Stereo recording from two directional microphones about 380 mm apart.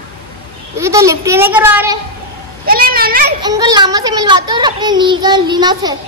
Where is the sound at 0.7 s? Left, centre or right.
Centre.